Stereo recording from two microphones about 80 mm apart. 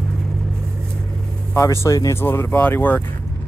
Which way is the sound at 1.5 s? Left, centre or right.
Left.